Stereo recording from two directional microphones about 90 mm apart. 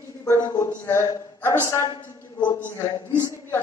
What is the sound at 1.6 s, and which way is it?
Speech, 35° left (ahead or behind).